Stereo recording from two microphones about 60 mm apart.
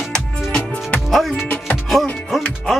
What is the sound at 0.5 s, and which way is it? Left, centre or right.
Music, left.